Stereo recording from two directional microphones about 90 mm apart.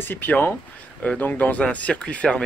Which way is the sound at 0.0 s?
20° left (ahead or behind).